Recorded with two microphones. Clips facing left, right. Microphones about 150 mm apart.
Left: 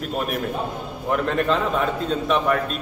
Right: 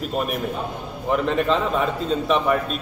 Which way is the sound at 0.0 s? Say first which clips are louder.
Right 1 dB; centre (ahead or behind).